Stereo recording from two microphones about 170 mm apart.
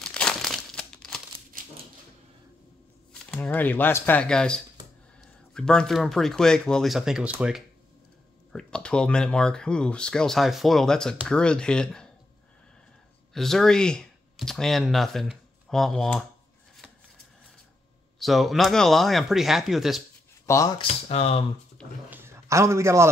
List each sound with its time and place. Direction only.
0.0 s crumpling: 5° left (ahead or behind)
1.5 s typewriter: 55° right (ahead or behind)
3.1 s speech: 5° left (ahead or behind)
8.5 s speech: 5° left (ahead or behind)
13.3 s speech: centre (ahead or behind)
18.2 s speech: centre (ahead or behind)
20.4 s speech: 20° left (ahead or behind)
20.8 s speech: 40° left (ahead or behind)
21.8 s a sound: 5° left (ahead or behind)
22.1 s a sound: 15° right (ahead or behind)